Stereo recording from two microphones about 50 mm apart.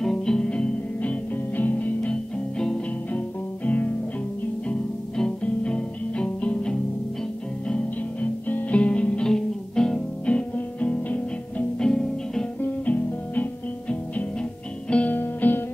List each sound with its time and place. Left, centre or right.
0.0 s music: centre
3.6 s music: left
4.6 s music: centre
8.5 s music: left
11.8 s music: centre
12.5 s music: left
15.0 s music: left